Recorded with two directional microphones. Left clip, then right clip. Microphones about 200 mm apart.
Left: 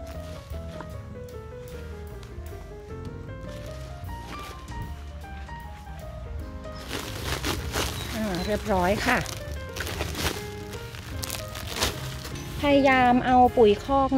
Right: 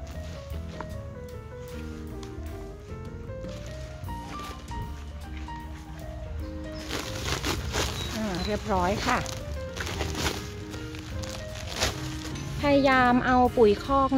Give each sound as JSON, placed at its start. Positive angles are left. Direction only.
{"t": 6.9, "sound": "a sound", "side_deg": 15}
{"t": 11.8, "sound": "music", "side_deg": 30}
{"t": 12.5, "sound": "speech", "side_deg": 10}